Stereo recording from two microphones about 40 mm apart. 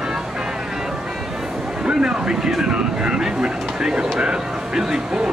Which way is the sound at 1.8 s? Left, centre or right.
Right.